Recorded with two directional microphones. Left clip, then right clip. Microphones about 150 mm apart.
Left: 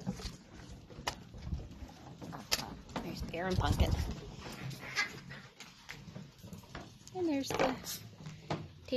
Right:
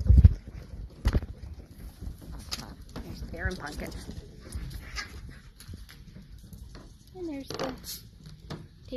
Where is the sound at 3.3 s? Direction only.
35° left (ahead or behind).